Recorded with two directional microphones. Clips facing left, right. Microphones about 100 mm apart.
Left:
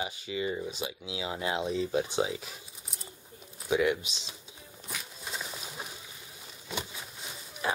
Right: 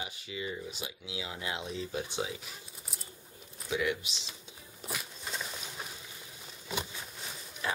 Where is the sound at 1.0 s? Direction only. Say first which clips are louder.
Left 5 dB; 25° left (ahead or behind).